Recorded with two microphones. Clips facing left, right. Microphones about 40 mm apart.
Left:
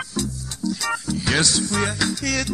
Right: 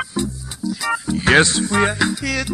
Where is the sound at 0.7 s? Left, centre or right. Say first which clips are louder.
Right 3 dB; centre.